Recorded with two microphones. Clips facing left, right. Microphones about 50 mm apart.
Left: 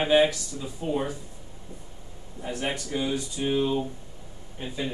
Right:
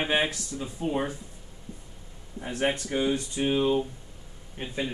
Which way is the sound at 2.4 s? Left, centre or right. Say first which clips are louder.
Right 3 dB; right.